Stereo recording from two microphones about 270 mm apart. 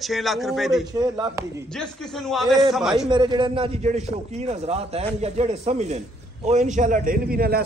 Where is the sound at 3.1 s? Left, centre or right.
Centre.